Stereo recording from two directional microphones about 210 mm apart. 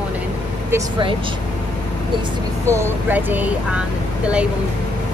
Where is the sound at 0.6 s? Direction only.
20° right (ahead or behind).